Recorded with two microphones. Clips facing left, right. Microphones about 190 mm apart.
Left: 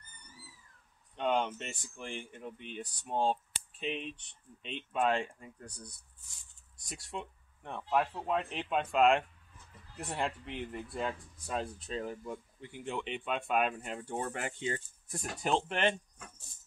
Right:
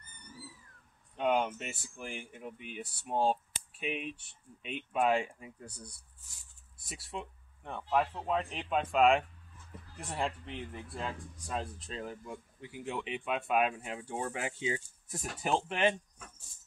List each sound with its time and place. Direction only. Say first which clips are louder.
1.1 s speech: right 1 dB; 5° right (ahead or behind)